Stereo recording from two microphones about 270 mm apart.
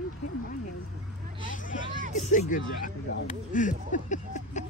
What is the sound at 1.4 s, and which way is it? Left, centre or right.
Speech, left.